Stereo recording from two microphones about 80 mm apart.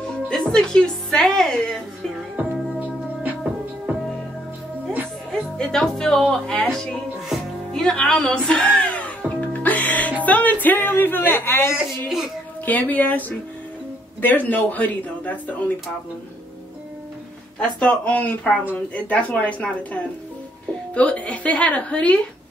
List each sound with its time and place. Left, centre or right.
0.3 s a woman's voice: centre
5.3 s music: centre
6.3 s speech: centre
7.2 s music: centre
10.2 s speech: centre
14.2 s speech: left
17.6 s speech: centre